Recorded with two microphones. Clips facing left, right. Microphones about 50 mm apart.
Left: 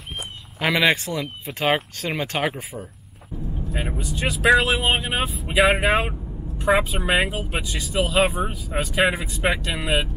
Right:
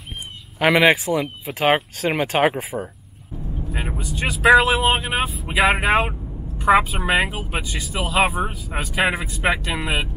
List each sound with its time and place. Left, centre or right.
0.6 s speech: centre
2.7 s speech: right
4.0 s speech: centre